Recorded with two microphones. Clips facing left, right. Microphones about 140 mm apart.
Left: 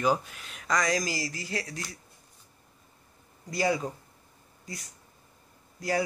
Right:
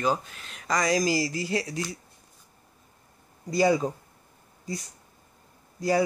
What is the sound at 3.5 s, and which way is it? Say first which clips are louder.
Speech: right 5 dB; 30° right (ahead or behind).